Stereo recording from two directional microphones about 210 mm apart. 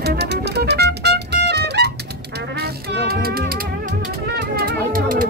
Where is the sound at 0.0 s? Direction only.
50° right (ahead or behind).